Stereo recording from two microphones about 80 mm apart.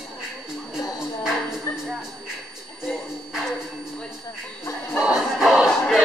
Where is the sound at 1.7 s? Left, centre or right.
Left.